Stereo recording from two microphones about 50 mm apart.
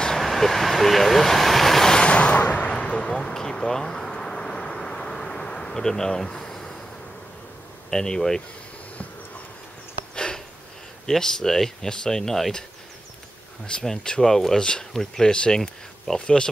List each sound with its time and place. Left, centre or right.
0.0 s vehicle: centre
2.0 s a sound: left
2.7 s a sound: centre
7.9 s speech: centre
10.1 s sniff: centre
11.1 s speech: centre
13.8 s speech: centre